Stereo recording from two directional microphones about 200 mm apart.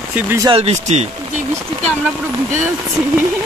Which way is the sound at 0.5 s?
35° right (ahead or behind).